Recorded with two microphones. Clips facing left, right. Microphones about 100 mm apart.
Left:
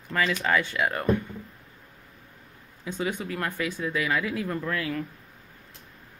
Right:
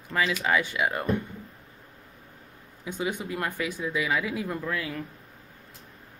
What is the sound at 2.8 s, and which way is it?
Speech, 15° right (ahead or behind).